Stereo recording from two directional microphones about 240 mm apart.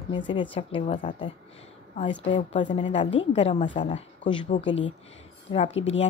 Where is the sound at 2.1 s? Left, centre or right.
Left.